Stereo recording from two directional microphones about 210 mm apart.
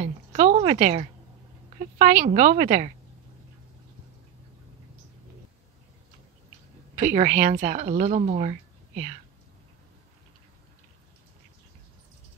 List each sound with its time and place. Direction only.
0.0 s a woman's voice: 35° right (ahead or behind)
7.0 s a woman's voice: 35° right (ahead or behind)